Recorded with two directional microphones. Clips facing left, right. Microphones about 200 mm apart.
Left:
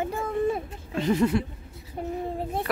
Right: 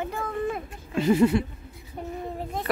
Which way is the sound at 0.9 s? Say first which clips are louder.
Right 3 dB; 10° right (ahead or behind).